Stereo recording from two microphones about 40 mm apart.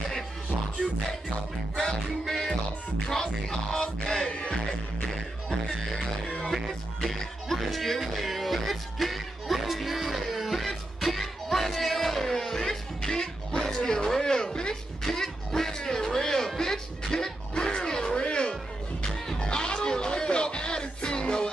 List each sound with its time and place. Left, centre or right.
1.9 s music: centre
4.3 s music: left
6.5 s music: centre
15.0 s music: centre